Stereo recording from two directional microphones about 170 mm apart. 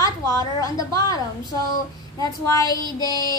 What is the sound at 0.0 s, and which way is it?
A woman's voice, 20° left (ahead or behind).